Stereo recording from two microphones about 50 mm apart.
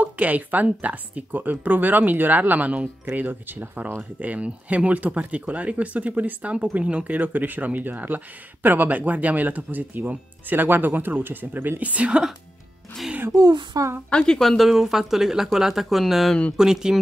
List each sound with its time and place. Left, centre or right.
0.0 s speech: right
11.9 s speech: right
14.1 s a woman's voice: centre
14.6 s speech: centre
16.5 s speech: centre